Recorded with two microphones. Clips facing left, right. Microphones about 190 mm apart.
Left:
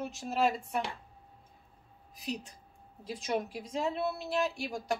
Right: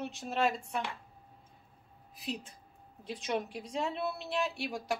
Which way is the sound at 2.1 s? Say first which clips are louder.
Left 1 dB; centre (ahead or behind).